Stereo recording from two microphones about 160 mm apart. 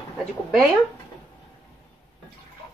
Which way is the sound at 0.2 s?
Centre (ahead or behind).